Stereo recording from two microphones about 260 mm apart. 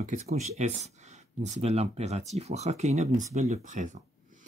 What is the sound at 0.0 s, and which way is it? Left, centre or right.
Speech, right.